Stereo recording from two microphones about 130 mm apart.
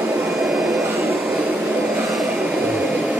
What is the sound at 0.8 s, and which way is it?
Vacuum cleaner, 20° right (ahead or behind).